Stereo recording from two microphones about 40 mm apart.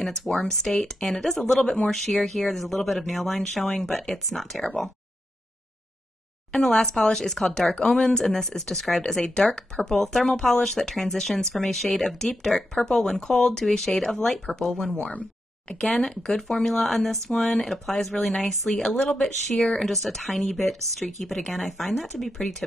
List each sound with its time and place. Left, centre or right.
0.4 s speech: centre
6.5 s speech: centre
11.7 s speech: centre
12.5 s speech: left
14.9 s speech: left
15.8 s speech: centre
18.8 s speech: centre